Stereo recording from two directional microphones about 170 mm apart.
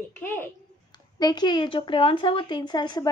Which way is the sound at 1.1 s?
25° left (ahead or behind).